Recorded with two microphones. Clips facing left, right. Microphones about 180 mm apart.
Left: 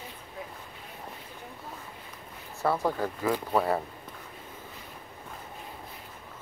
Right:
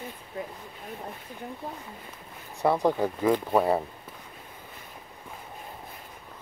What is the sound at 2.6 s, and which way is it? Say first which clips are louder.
Speech: right 4 dB; 15° right (ahead or behind).